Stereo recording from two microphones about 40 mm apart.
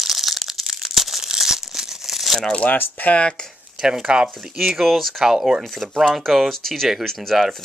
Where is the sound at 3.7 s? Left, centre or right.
Centre.